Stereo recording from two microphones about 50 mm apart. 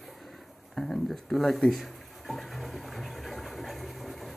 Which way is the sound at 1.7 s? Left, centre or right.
Centre.